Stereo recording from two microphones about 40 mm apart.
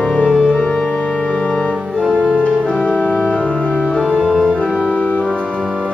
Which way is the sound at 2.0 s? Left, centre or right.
Right.